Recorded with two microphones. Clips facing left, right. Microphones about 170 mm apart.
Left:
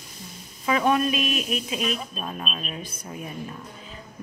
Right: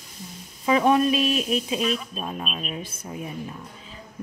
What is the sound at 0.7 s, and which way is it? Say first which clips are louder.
Speech: right 3 dB; 25° right (ahead or behind).